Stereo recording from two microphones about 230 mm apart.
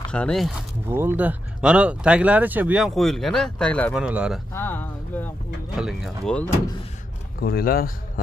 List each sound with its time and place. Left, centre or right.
0.1 s speech: centre
0.8 s speech: centre
4.6 s speech: centre
7.3 s speech: left